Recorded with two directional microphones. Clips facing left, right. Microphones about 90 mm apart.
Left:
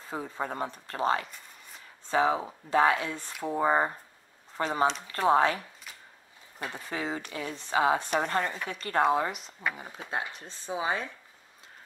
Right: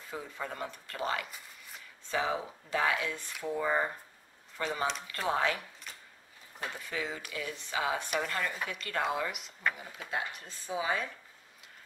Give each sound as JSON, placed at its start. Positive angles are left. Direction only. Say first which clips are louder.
{"t": 0.0, "sound": "a woman's voice", "louder": "left 5 dB", "side_deg": 35}
{"t": 6.7, "sound": "a woman's voice", "louder": "left 5 dB", "side_deg": 35}